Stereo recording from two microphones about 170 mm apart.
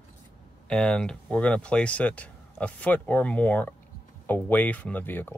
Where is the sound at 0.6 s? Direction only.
5° left (ahead or behind).